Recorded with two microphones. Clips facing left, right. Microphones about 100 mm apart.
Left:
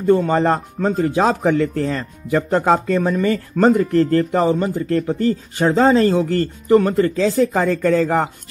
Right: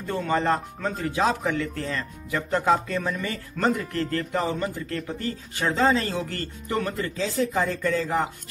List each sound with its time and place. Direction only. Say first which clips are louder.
0.2 s speech: left 6 dB; 40° left (ahead or behind); by 8.3 s 60° left (ahead or behind)